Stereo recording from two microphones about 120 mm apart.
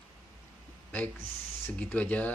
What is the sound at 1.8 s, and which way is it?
Speech, 10° left (ahead or behind).